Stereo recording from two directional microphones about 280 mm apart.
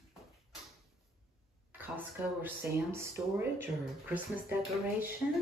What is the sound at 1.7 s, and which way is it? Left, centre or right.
Speech, centre.